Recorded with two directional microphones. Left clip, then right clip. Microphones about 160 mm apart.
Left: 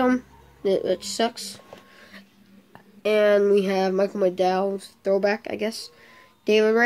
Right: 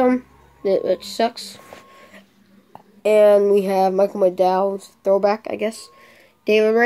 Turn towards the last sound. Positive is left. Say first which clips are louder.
# right 3 dB
turn(degrees=0)  # may be behind; listen again after turning